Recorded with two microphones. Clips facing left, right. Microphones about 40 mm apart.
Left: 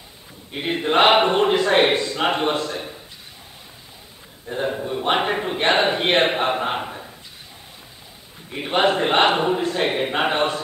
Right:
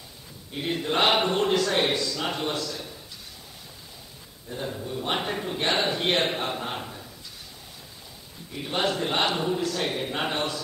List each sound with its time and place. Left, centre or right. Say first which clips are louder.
0.5 s a man's voice: left 6 dB; left
4.5 s a man's voice: left 8 dB; left
8.5 s a man's voice: left 8 dB; left